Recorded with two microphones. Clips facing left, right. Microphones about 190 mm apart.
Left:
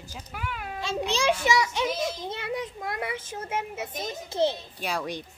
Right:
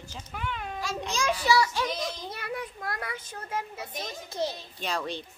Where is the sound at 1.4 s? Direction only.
20° left (ahead or behind).